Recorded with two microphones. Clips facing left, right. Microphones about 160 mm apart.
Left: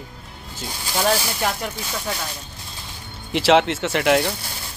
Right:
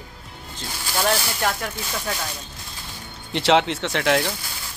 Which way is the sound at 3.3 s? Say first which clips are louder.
Left 2 dB; centre (ahead or behind).